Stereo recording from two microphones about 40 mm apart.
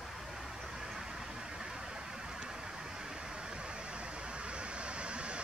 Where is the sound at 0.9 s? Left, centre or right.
Centre.